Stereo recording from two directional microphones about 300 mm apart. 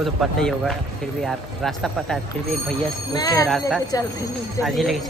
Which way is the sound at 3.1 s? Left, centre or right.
Centre.